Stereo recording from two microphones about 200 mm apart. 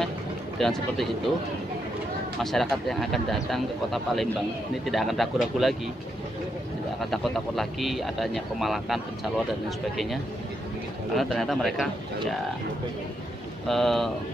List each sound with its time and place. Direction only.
0.6 s speech: centre (ahead or behind)
2.4 s speech: centre (ahead or behind)
7.0 s speech: centre (ahead or behind)
11.1 s speech: centre (ahead or behind)
13.7 s speech: centre (ahead or behind)